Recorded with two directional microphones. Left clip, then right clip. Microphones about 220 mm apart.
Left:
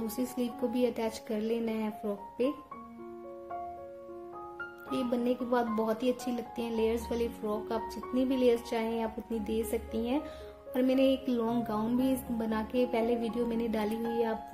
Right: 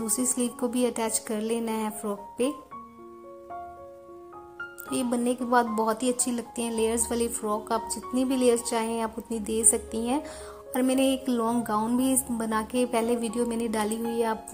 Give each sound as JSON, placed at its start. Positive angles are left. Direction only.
{"t": 0.1, "sound": "speech", "side_deg": -20}
{"t": 4.9, "sound": "speech", "side_deg": -20}